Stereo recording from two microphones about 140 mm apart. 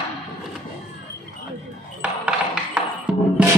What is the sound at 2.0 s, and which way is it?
Music, 10° right (ahead or behind).